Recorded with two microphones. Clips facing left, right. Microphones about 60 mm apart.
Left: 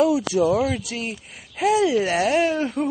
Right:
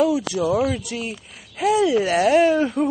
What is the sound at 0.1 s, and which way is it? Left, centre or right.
Speech, centre.